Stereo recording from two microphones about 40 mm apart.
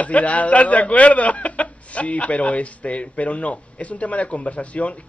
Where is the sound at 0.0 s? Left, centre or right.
Left.